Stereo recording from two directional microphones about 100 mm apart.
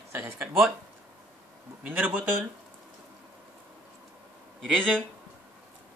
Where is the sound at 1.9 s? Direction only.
15° right (ahead or behind).